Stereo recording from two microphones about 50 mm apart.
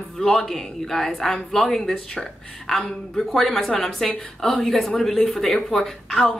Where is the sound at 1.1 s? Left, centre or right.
Centre.